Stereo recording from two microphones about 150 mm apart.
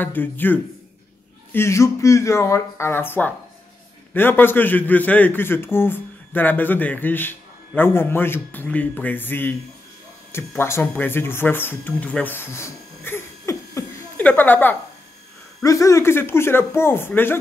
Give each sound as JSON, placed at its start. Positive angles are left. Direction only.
{"t": 0.0, "sound": "a man's voice", "side_deg": 15}